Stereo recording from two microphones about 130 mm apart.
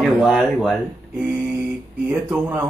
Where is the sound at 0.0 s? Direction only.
5° right (ahead or behind).